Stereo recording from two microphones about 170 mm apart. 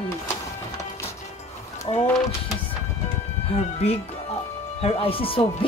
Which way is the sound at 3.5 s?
40° left (ahead or behind).